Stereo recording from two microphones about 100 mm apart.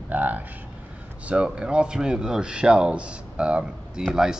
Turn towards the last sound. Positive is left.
turn(degrees=-5)  # may be behind; listen again after turning